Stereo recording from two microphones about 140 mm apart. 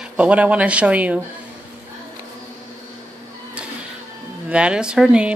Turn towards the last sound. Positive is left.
turn(degrees=-5)  # may be behind; listen again after turning